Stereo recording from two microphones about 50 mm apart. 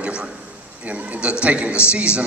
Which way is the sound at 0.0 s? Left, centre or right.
Right.